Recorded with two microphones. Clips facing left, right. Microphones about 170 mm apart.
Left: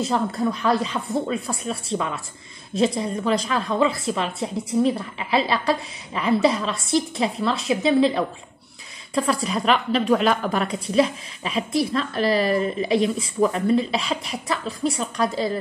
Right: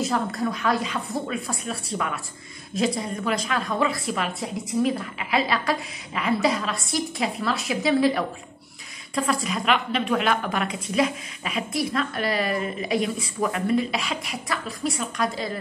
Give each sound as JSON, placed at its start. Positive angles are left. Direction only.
{"t": 0.0, "sound": "a woman's voice", "side_deg": 30}